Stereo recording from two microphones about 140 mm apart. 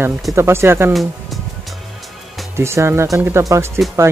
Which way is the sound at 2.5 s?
20° right (ahead or behind).